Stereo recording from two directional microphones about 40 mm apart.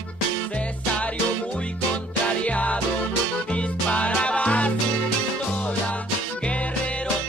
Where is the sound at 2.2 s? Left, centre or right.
Left.